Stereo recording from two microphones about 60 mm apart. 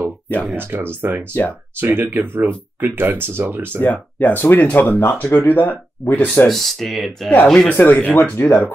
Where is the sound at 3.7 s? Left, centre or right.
Left.